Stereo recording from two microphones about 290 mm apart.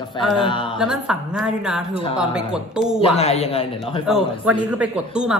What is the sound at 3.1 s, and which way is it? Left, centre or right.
Speech, left.